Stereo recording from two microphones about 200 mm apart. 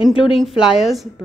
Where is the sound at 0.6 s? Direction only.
Centre (ahead or behind).